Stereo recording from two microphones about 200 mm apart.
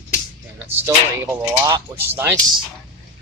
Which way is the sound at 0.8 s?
10° right (ahead or behind).